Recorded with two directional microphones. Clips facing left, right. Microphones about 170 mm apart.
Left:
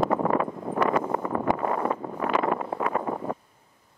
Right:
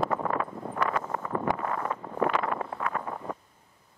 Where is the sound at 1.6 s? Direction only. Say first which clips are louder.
Left 5 dB; 20° left (ahead or behind).